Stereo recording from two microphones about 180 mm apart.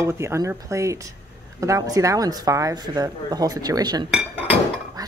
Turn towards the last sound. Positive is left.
turn(degrees=-20)  # may be behind; listen again after turning